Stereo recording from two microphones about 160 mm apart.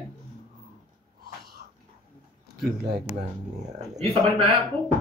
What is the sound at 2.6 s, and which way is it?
Speech, 80° right.